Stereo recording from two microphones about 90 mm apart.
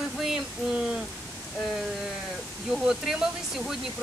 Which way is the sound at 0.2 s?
5° right (ahead or behind).